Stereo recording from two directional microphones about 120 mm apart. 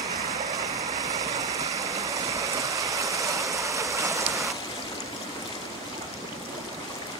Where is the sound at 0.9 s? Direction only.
30° right (ahead or behind).